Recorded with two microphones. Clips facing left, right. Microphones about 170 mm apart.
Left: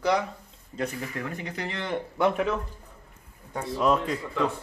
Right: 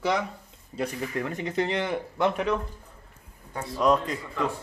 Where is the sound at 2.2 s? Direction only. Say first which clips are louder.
Left 1 dB; 5° left (ahead or behind).